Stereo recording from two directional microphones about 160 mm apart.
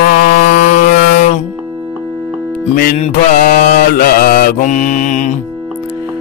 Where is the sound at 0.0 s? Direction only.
60° left (ahead or behind).